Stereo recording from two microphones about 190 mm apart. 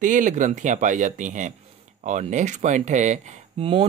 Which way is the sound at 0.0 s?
45° right (ahead or behind).